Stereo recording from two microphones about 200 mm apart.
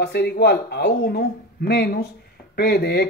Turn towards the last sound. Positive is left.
turn(degrees=50)  # may be behind; listen again after turning